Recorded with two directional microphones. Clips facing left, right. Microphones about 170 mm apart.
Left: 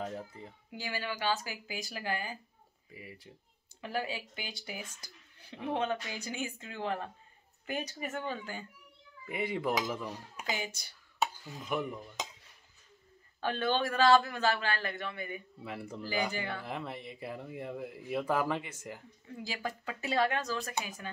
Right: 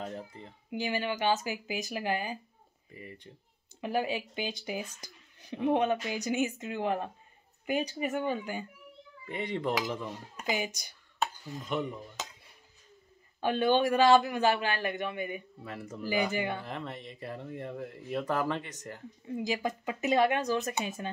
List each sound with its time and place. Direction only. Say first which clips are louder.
0.7 s speech: right 7 dB; 20° right (ahead or behind)
2.9 s speech: right 3 dB; 5° left (ahead or behind)
3.8 s a man's voice: right 5 dB; 20° right (ahead or behind)
9.2 s speech: right 1 dB; 5° left (ahead or behind)
10.5 s a man's voice: right 5 dB; 15° right (ahead or behind)
11.1 s a sound: even; 5° left (ahead or behind)
13.4 s a man's voice: right 5 dB; 15° right (ahead or behind)
15.6 s speech: even; 10° left (ahead or behind)
16.0 s a man's voice: right 5 dB; 15° right (ahead or behind)
16.6 s speech: even; 10° left (ahead or behind)
19.2 s a man's voice: right 7 dB; 20° right (ahead or behind)